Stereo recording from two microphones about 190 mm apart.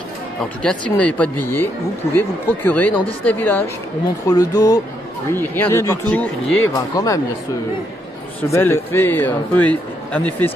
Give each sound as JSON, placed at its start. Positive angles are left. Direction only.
{"t": 0.6, "sound": "a man's voice", "side_deg": 5}
{"t": 4.3, "sound": "a man's voice", "side_deg": 20}
{"t": 8.5, "sound": "a man's voice", "side_deg": 15}